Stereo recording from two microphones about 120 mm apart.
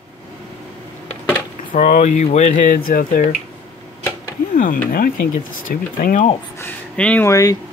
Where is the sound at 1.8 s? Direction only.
85° left.